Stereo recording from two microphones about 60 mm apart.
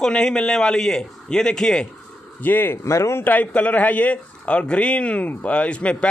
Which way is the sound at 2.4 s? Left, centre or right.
Left.